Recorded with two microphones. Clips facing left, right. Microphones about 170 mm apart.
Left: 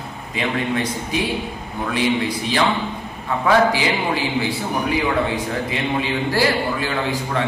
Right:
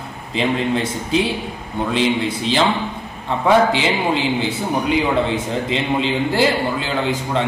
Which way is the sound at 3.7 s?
25° right (ahead or behind).